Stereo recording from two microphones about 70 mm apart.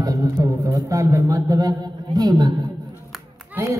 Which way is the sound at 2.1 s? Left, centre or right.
Right.